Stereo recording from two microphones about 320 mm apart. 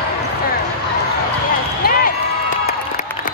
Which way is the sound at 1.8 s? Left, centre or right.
Left.